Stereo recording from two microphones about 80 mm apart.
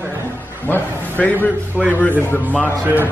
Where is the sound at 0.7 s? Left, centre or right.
Left.